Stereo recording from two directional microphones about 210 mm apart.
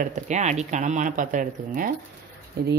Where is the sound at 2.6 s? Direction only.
50° right (ahead or behind).